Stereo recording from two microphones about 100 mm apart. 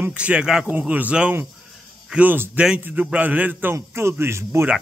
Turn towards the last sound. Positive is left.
turn(degrees=-25)  # may be behind; listen again after turning